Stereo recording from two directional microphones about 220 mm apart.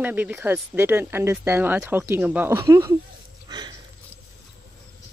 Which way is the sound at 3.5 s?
20° right (ahead or behind).